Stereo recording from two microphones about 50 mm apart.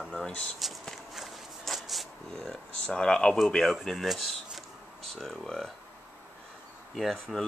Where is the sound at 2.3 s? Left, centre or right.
Centre.